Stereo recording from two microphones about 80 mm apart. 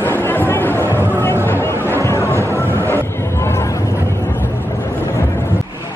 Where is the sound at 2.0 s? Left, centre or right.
Left.